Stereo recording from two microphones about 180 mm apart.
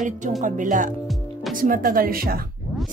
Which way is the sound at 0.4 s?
45° right (ahead or behind).